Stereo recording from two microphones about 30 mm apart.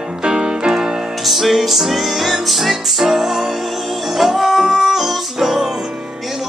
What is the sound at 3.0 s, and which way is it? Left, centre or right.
Music, centre.